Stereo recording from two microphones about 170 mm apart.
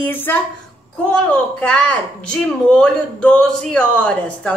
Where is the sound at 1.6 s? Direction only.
5° left (ahead or behind).